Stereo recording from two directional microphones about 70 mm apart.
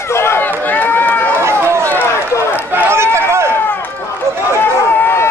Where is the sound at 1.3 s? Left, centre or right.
Right.